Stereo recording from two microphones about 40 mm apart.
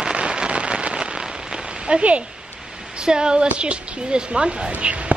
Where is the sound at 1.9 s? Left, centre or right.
Right.